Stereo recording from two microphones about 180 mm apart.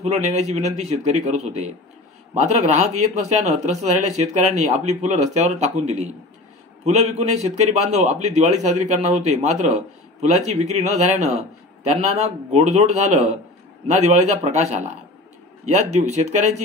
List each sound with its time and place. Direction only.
0.0 s a man's voice: 40° right (ahead or behind)